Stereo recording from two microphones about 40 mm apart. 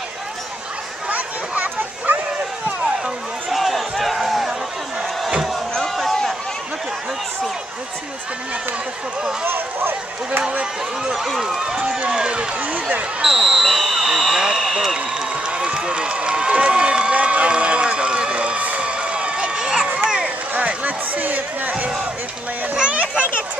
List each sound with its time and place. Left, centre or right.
1.0 s a sound: right
3.4 s crowd: centre
5.8 s a sound: centre
9.4 s speech: right
11.3 s speech: centre
12.5 s speech: right
13.2 s basketball bounce: centre
15.0 s run: right
18.8 s a sound: right
20.5 s music: right
22.8 s children playing: right